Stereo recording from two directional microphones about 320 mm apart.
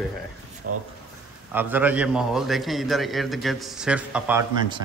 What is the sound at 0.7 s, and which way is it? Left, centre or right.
Speech, right.